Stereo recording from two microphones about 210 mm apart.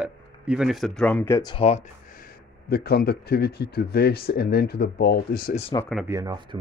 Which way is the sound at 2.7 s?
50° left (ahead or behind).